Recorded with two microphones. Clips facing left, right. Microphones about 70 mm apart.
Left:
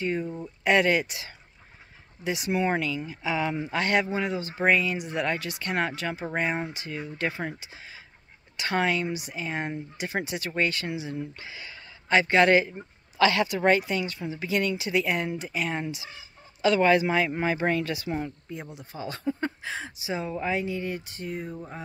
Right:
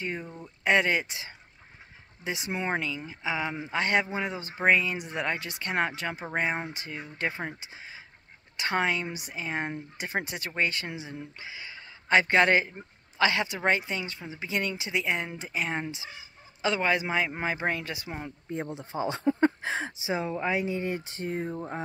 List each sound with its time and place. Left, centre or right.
0.2 s speech: centre
0.7 s speech: right
11.3 s speech: centre
12.1 s speech: right
20.3 s speech: centre
20.6 s speech: right